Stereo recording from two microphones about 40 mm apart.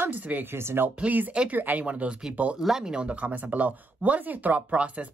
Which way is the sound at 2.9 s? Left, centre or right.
Right.